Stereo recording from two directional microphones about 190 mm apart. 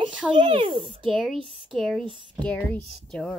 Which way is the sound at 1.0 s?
Centre (ahead or behind).